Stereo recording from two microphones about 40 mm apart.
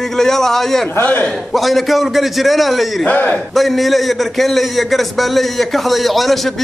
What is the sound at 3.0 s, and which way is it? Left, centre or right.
Speech, left.